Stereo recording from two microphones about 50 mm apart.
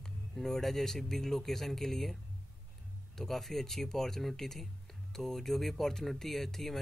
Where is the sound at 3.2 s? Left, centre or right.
Centre.